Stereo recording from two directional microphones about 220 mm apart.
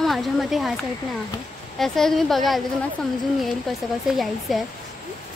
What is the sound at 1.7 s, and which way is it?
Speech, centre (ahead or behind).